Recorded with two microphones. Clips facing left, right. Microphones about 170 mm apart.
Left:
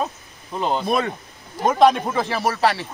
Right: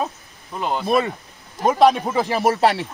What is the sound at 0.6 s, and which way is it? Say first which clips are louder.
Speech: left 2 dB; 20° left (ahead or behind).